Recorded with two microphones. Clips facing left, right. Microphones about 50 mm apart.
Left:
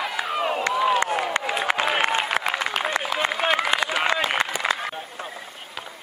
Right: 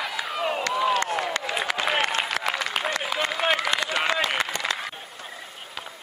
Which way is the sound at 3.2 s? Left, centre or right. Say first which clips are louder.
Left 1 dB; centre.